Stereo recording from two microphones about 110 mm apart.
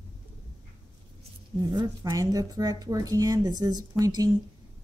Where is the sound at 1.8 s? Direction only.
35° right (ahead or behind).